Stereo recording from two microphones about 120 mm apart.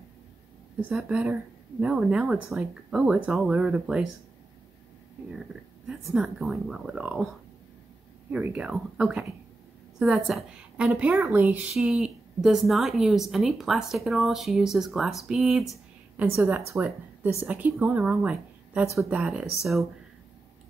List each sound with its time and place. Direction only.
0.9 s speech: 10° right (ahead or behind)
5.9 s a woman's voice: 5° right (ahead or behind)
8.3 s a woman's voice: 10° right (ahead or behind)
16.3 s speech: 15° right (ahead or behind)
18.2 s a sound: 10° right (ahead or behind)
19.0 s a woman's voice: 10° right (ahead or behind)